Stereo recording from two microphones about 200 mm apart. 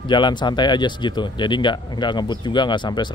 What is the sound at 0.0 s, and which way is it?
Speech, 25° left (ahead or behind).